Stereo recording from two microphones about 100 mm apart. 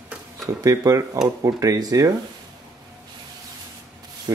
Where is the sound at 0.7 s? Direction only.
35° right (ahead or behind).